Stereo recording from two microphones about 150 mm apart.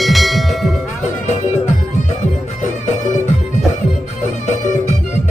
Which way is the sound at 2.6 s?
50° left (ahead or behind).